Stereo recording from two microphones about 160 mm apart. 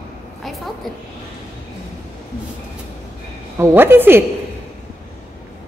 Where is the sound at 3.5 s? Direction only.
15° right (ahead or behind).